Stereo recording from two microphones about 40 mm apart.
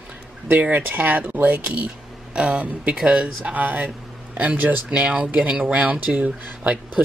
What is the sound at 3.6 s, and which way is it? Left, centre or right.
Speech, right.